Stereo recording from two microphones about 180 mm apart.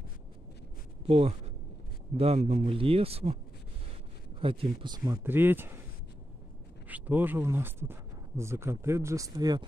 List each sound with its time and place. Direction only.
1.0 s speech: 30° right (ahead or behind)
4.4 s speech: 30° right (ahead or behind); by 5.8 s 10° right (ahead or behind)
6.9 s speech: 10° right (ahead or behind)